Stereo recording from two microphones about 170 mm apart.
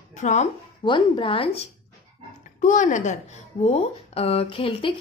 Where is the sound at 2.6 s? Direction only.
45° left (ahead or behind).